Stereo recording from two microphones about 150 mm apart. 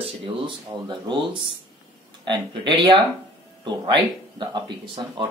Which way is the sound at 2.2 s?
30° right (ahead or behind).